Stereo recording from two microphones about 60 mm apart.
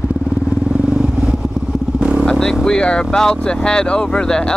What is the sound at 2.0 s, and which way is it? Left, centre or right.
Vehicle, right.